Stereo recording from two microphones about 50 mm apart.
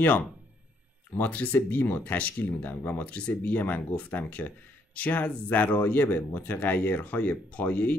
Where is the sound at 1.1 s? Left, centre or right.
Left.